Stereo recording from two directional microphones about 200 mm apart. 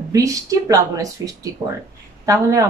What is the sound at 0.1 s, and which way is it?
Speech, 15° right (ahead or behind).